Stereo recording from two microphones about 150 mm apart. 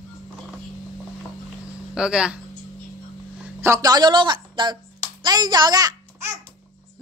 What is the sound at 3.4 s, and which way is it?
A woman's voice, 20° right (ahead or behind).